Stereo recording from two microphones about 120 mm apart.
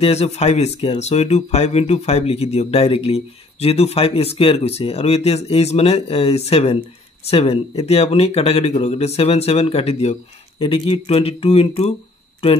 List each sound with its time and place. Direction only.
0.0 s speech: 65° left (ahead or behind)